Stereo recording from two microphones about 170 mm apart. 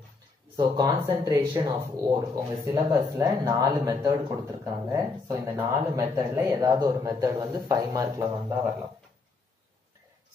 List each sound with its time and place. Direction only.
0.6 s speech: 25° right (ahead or behind)